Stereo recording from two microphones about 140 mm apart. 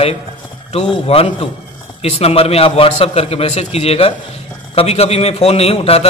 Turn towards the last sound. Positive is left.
turn(degrees=45)  # may be behind; listen again after turning